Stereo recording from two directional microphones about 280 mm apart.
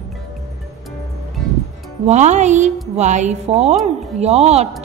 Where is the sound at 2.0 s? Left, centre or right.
Right.